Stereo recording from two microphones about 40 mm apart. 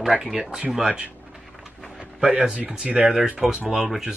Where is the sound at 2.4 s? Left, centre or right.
Right.